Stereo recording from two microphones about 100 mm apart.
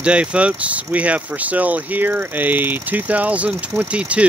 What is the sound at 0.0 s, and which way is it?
Speech, 10° right (ahead or behind).